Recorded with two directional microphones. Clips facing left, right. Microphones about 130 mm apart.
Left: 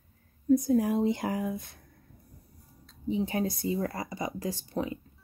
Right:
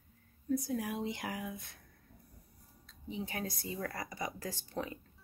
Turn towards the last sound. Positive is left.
turn(degrees=20)  # may be behind; listen again after turning